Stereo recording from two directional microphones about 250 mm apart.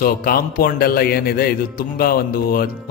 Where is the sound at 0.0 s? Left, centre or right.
Left.